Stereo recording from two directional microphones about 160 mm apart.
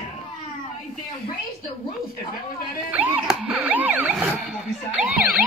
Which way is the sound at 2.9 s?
10° right (ahead or behind).